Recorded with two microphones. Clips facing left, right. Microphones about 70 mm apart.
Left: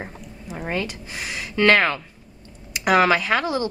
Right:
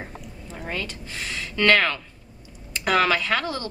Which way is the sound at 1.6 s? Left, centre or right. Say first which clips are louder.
Left 3 dB; centre.